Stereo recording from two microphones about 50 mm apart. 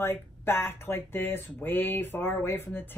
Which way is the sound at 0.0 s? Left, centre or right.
Left.